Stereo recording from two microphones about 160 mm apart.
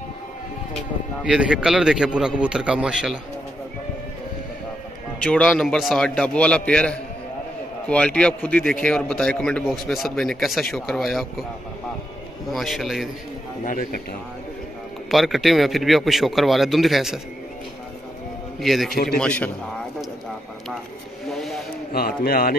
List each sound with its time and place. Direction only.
1.2 s speech: 5° right (ahead or behind)
5.2 s a man's voice: 5° left (ahead or behind)
12.4 s speech: centre (ahead or behind)
13.7 s speech: 55° left (ahead or behind)
15.0 s speech: centre (ahead or behind)
18.6 s a man's voice: centre (ahead or behind)
21.3 s vehicle: centre (ahead or behind)
21.9 s a man's voice: 70° left (ahead or behind)